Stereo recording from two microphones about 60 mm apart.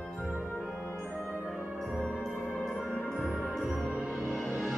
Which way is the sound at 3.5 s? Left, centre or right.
Centre.